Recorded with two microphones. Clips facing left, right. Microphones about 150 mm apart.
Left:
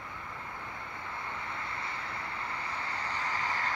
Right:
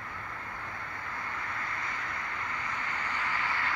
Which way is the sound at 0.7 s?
25° left (ahead or behind).